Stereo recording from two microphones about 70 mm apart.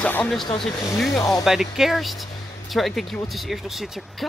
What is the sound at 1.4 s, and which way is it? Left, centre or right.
Speech, centre.